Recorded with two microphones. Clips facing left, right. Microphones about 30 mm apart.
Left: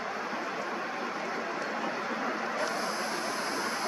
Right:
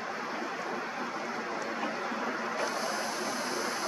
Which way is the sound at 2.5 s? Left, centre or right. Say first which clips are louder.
Left 1 dB; left.